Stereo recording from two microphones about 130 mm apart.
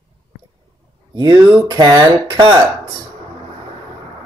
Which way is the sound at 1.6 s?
30° right (ahead or behind).